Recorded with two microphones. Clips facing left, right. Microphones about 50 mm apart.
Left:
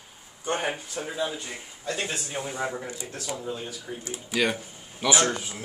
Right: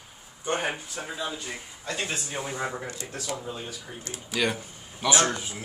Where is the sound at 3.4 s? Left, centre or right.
Centre.